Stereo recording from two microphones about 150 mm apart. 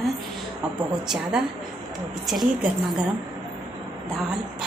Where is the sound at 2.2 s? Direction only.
Centre (ahead or behind).